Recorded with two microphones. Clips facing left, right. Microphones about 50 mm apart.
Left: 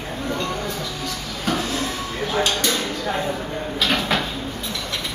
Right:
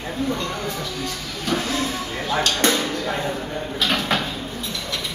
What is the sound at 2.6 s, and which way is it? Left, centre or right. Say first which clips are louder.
Speech: right 3 dB; right.